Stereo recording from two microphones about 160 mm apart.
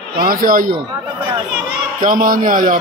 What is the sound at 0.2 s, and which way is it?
Speech, 65° right (ahead or behind).